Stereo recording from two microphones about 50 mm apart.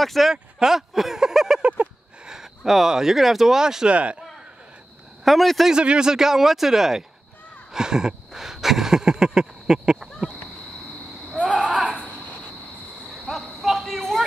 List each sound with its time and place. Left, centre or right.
0.0 s speech: centre
0.3 s speech: centre
1.6 s a sound: right
2.2 s speech: centre
3.9 s speech: right
5.2 s speech: centre
5.7 s speech: centre
7.7 s a sound: centre
11.3 s owl: centre
13.3 s a sound: centre